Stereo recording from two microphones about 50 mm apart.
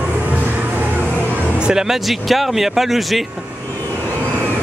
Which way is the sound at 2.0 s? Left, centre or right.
Centre.